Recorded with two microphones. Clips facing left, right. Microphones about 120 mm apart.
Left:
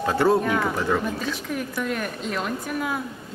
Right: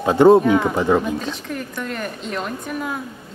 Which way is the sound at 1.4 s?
5° left (ahead or behind).